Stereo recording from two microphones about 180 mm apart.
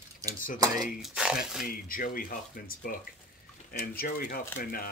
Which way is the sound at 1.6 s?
55° left (ahead or behind).